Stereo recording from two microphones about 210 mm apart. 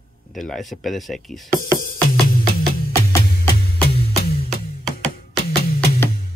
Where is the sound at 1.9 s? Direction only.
45° left (ahead or behind).